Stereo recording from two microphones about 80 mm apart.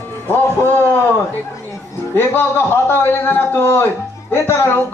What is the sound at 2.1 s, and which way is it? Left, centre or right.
Speech, left.